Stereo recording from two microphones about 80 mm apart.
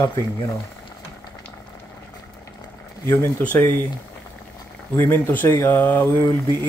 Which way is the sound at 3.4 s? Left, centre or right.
Left.